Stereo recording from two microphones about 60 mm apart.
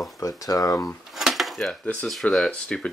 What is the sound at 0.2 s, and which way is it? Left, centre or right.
Speech, left.